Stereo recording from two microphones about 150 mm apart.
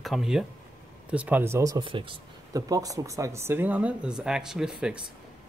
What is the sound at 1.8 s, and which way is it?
Speech, 35° right (ahead or behind).